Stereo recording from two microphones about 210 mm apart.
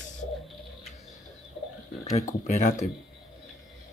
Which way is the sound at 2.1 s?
35° left (ahead or behind).